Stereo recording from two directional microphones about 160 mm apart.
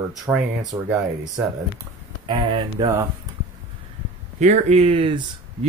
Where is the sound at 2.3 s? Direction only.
30° right (ahead or behind).